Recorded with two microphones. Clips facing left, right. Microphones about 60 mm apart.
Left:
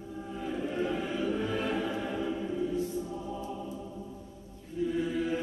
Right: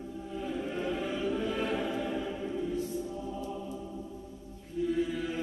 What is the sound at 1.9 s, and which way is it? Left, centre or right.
Choir, left.